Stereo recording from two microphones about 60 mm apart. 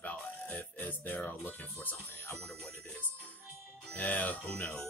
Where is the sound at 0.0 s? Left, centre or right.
Left.